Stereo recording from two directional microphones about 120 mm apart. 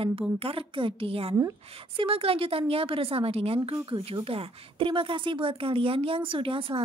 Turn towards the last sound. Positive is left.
turn(degrees=-50)  # may be behind; listen again after turning